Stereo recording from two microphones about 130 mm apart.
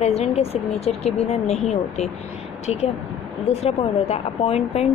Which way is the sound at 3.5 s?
50° left (ahead or behind).